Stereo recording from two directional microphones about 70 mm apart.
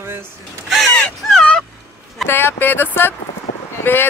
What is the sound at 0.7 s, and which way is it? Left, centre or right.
Crow, centre.